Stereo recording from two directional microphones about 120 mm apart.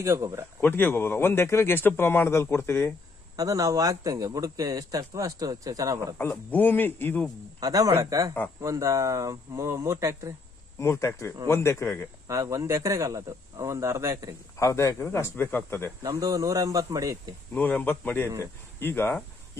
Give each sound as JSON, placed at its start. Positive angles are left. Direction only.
{"t": 0.0, "sound": "a man's voice", "side_deg": -25}
{"t": 0.6, "sound": "a man's voice", "side_deg": 15}
{"t": 3.3, "sound": "a man's voice", "side_deg": -30}
{"t": 6.3, "sound": "speech", "side_deg": 15}
{"t": 7.6, "sound": "a man's voice", "side_deg": -30}
{"t": 10.8, "sound": "a man's voice", "side_deg": 25}
{"t": 12.3, "sound": "a man's voice", "side_deg": -25}
{"t": 14.6, "sound": "a man's voice", "side_deg": 25}
{"t": 16.0, "sound": "a man's voice", "side_deg": -30}
{"t": 17.6, "sound": "speech", "side_deg": 15}